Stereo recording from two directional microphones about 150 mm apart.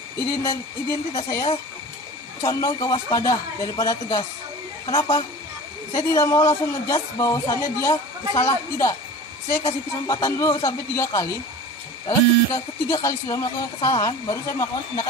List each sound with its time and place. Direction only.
0.3 s speech: 25° left (ahead or behind)